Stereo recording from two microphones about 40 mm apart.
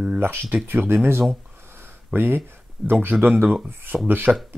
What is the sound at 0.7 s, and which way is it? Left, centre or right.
Speech, right.